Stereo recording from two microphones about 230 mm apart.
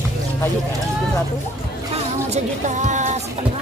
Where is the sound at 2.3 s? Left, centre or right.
Right.